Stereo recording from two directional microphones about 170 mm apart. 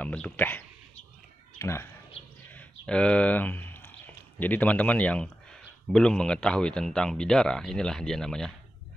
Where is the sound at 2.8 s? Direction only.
5° left (ahead or behind).